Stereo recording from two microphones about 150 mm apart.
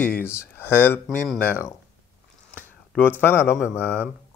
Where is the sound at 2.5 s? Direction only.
15° left (ahead or behind).